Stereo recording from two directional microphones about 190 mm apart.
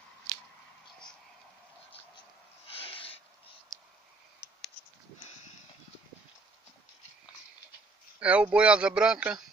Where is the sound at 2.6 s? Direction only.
30° left (ahead or behind).